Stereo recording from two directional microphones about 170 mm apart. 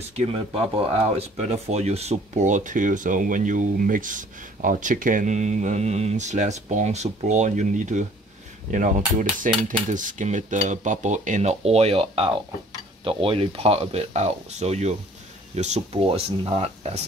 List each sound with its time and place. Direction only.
0.1 s speech: 35° right (ahead or behind)